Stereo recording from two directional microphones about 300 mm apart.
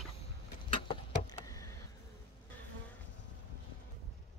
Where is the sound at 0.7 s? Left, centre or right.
Centre.